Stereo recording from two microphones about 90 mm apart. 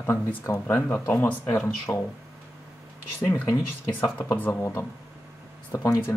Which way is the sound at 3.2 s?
20° left (ahead or behind).